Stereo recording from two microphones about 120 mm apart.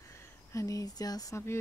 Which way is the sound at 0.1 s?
25° left (ahead or behind).